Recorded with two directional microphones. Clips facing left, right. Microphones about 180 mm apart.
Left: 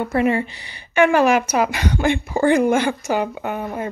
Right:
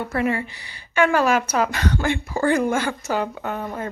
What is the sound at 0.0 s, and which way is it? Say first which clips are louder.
A woman's voice: left 4 dB; 20° left (ahead or behind).